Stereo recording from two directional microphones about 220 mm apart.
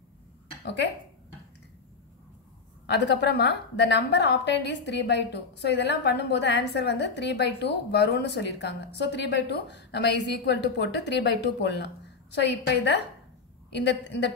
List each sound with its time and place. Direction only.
2.9 s a woman's voice: 50° left (ahead or behind)